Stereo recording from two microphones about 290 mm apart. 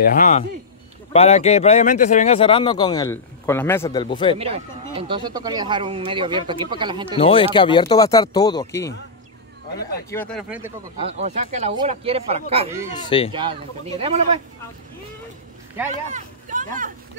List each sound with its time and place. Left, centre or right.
0.0 s speech: left
4.4 s speech: centre
7.2 s speech: centre
11.0 s speech: right
15.9 s speech: right